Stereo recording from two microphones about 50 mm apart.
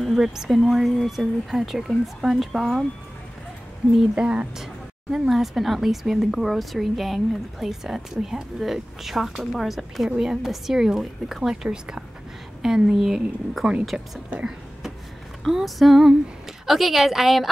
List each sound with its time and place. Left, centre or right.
0.0 s a woman's voice: centre
4.1 s speech: right
5.1 s a woman's voice: centre
15.5 s a woman's voice: centre